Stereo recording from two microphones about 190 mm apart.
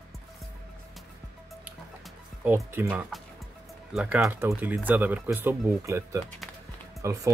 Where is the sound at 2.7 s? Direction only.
10° right (ahead or behind).